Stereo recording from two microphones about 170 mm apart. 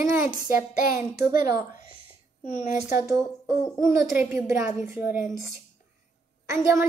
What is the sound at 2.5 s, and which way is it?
Speech, 45° left (ahead or behind).